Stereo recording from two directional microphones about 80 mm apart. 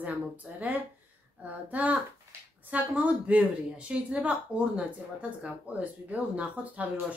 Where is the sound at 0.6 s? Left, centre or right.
Right.